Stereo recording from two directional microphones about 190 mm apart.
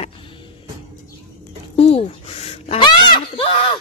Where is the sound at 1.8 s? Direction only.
30° left (ahead or behind).